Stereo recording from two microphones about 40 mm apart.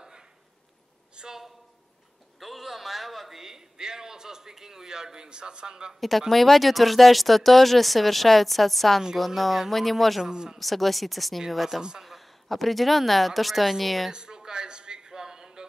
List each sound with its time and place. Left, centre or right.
1.1 s a sound: centre
2.4 s a man's voice: centre
5.9 s speech: centre
10.2 s a man's voice: centre
10.6 s speech: centre
14.1 s a sound: centre